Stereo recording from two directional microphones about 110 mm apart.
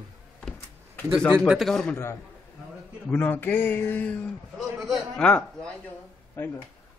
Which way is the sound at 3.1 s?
15° left (ahead or behind).